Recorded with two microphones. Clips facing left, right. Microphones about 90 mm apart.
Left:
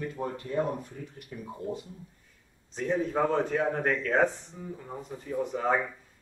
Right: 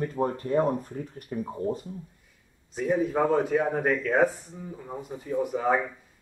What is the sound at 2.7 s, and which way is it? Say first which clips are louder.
Speech: right 3 dB; 5° right (ahead or behind).